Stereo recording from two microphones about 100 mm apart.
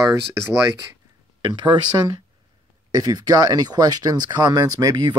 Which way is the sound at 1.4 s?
50° right (ahead or behind).